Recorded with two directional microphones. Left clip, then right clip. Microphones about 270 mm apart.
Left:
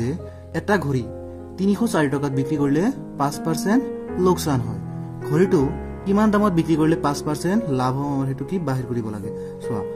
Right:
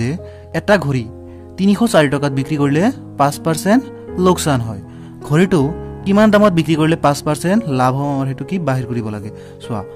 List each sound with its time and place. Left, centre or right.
0.0 s speech: right